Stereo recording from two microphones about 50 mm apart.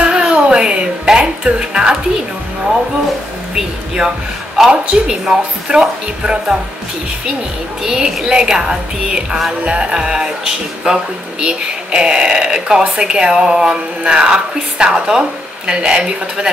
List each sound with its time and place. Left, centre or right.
0.0 s music: centre
3.5 s speech: centre
7.8 s speech: centre